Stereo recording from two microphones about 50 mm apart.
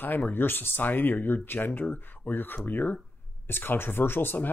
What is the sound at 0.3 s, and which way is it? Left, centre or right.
Speech, left.